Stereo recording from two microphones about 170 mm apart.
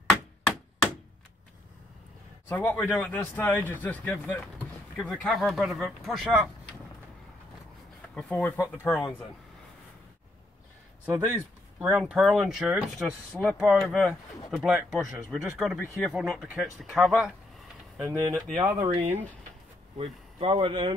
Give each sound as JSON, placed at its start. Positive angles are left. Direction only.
{"t": 2.4, "sound": "a man's voice", "side_deg": 10}
{"t": 8.1, "sound": "speech", "side_deg": 5}
{"t": 8.5, "sound": "speech", "side_deg": -10}
{"t": 11.1, "sound": "speech", "side_deg": -10}
{"t": 11.9, "sound": "speech", "side_deg": 0}
{"t": 14.5, "sound": "speech", "side_deg": -10}
{"t": 18.8, "sound": "speech", "side_deg": -35}